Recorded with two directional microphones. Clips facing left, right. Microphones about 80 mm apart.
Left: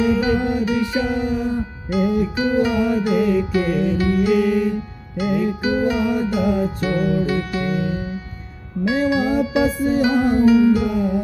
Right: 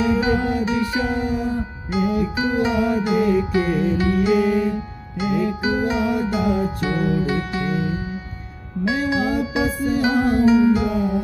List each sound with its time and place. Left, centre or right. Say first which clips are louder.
0.0 s music: left 1 dB; right
9.1 s music: left 3 dB; right